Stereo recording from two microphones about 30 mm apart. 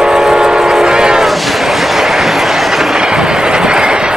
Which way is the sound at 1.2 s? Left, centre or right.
Centre.